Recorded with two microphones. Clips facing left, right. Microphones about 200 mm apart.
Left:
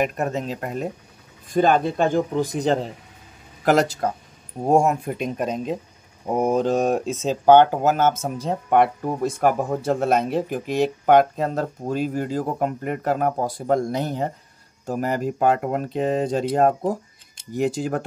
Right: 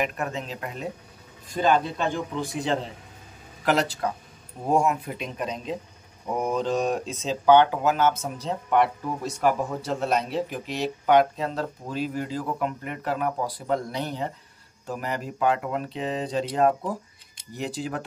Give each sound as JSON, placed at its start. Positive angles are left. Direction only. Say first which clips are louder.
{"t": 0.0, "sound": "speech", "louder": "left 5 dB", "side_deg": 40}